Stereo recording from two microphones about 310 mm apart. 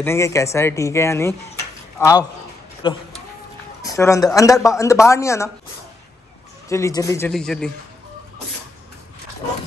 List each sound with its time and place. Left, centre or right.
0.0 s a man's voice: centre
6.7 s speech: centre